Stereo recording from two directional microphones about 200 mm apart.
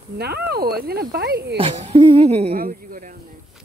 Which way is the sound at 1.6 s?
30° right (ahead or behind).